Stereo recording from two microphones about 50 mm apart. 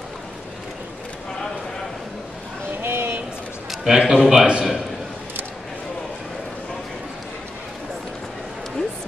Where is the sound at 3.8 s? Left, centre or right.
Centre.